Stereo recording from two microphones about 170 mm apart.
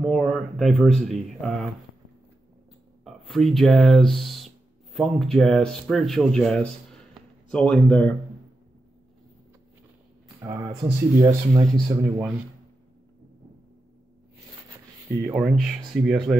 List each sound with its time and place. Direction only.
0.0 s speech: centre (ahead or behind)
3.0 s speech: centre (ahead or behind)
10.4 s speech: 25° right (ahead or behind)
12.2 s speech: 5° right (ahead or behind)
15.3 s speech: centre (ahead or behind)